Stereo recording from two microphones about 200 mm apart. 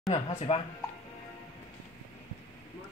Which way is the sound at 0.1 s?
30° left (ahead or behind).